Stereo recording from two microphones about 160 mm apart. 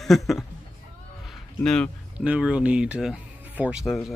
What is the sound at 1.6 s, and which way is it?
Speech, 5° left (ahead or behind).